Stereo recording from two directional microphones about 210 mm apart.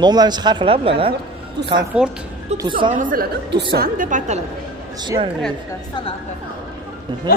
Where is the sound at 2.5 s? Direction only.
20° right (ahead or behind).